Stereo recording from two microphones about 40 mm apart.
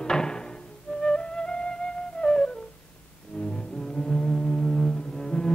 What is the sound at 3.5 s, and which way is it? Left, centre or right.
Music, centre.